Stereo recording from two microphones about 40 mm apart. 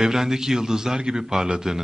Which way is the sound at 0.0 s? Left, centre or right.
Centre.